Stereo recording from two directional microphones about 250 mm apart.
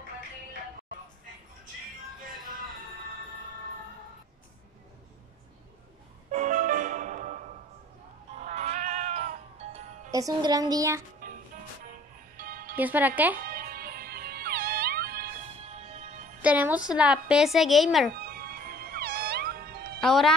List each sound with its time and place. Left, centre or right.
6.3 s music: right
8.5 s cat: right
10.1 s a child's voice: centre
11.2 s music: right
12.7 s a child's voice: centre
13.5 s music: right
15.6 s music: right
16.4 s speech: centre
18.1 s cat: right
20.0 s speech: centre